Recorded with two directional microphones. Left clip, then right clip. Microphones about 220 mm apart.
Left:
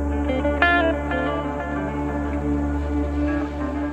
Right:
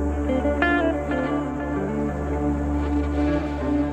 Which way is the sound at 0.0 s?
Centre (ahead or behind).